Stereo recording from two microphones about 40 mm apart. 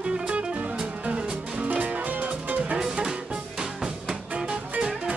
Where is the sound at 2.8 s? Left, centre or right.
Centre.